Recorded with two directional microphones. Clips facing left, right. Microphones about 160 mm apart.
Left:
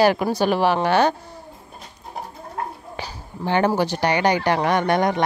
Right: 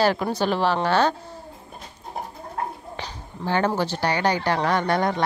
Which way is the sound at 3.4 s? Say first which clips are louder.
Left 3 dB; 15° left (ahead or behind).